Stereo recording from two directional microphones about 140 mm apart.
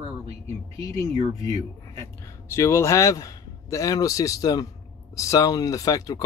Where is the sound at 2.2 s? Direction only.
20° left (ahead or behind).